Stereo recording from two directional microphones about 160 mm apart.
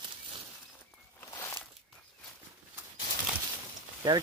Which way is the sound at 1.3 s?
15° left (ahead or behind).